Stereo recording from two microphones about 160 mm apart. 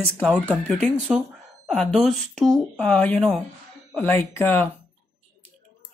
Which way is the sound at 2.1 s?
Centre (ahead or behind).